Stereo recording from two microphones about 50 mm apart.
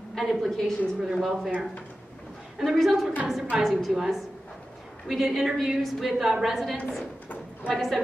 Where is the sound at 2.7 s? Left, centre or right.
Centre.